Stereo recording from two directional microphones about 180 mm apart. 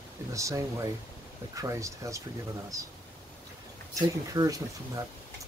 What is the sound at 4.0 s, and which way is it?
Speech, 20° right (ahead or behind).